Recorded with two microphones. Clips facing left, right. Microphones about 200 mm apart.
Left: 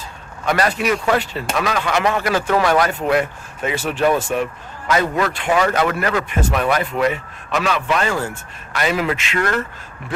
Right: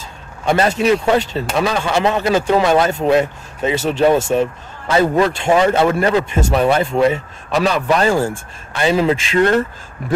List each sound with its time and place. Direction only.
0.5 s a man's voice: 25° right (ahead or behind)
10.0 s speech: 40° right (ahead or behind)